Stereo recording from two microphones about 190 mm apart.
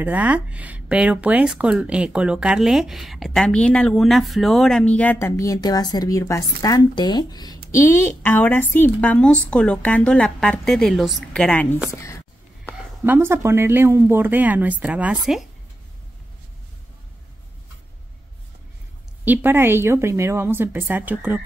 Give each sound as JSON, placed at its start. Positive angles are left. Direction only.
{"t": 0.0, "sound": "a woman's voice", "side_deg": -10}
{"t": 12.7, "sound": "speech", "side_deg": -10}
{"t": 19.2, "sound": "speech", "side_deg": -10}